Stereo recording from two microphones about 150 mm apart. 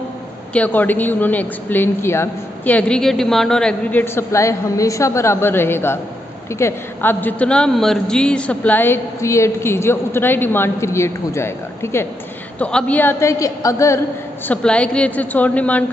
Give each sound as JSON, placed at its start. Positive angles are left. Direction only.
{"t": 0.5, "sound": "a woman's voice", "side_deg": 10}
{"t": 4.0, "sound": "a woman's voice", "side_deg": 15}
{"t": 14.5, "sound": "a woman's voice", "side_deg": 5}